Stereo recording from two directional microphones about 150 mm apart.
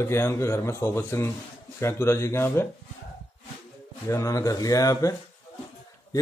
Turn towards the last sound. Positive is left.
turn(degrees=25)  # may be behind; listen again after turning